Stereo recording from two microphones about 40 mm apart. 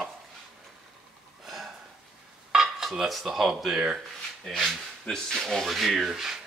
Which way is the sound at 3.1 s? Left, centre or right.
Centre.